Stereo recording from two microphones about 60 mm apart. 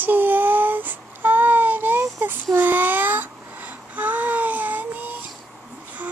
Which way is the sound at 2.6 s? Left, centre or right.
Right.